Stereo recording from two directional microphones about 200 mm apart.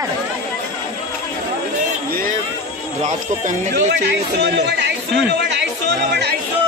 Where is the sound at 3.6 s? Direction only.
50° right (ahead or behind).